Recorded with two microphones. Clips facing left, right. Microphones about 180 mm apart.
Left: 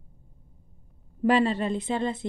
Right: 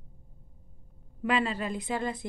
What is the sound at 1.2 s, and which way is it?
A woman's voice, 35° left (ahead or behind).